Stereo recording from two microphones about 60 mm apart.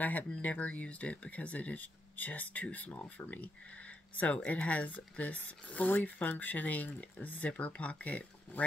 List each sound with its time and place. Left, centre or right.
0.0 s speech: left